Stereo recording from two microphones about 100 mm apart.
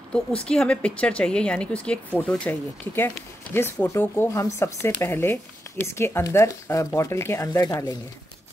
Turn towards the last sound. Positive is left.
turn(degrees=35)  # may be behind; listen again after turning